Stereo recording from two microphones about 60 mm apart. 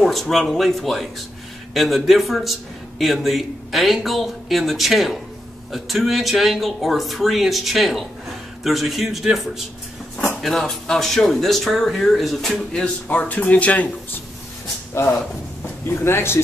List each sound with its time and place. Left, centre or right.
0.0 s speech: centre
10.7 s speech: centre
12.7 s a man's voice: left
15.9 s speech: left